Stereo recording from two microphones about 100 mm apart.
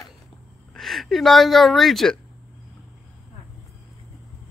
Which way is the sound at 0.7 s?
Centre (ahead or behind).